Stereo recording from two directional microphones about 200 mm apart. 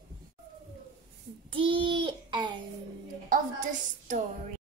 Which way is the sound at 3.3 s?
40° right (ahead or behind).